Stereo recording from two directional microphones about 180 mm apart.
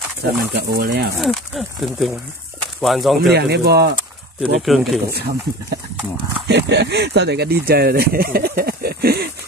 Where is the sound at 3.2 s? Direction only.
65° right (ahead or behind).